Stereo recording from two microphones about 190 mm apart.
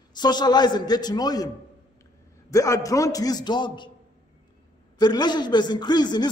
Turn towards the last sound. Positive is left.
turn(degrees=20)  # may be behind; listen again after turning